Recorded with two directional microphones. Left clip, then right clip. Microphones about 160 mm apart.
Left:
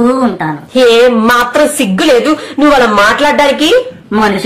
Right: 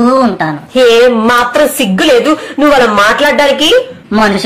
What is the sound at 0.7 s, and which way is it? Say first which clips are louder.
Speech: even; 5° left (ahead or behind).